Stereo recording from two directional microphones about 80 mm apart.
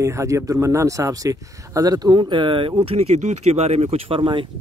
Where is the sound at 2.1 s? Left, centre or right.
Right.